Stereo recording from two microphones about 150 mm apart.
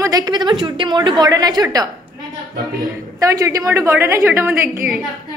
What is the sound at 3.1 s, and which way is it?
A woman's voice, 25° right (ahead or behind).